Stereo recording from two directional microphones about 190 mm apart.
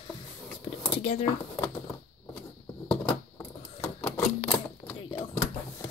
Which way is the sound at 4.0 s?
10° left (ahead or behind).